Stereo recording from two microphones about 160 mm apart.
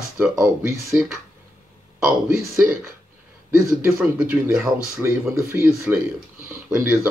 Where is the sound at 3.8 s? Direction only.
5° right (ahead or behind).